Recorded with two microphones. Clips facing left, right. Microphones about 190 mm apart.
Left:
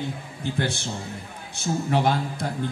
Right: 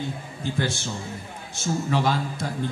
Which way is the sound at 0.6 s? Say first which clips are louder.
Even; 60° left (ahead or behind).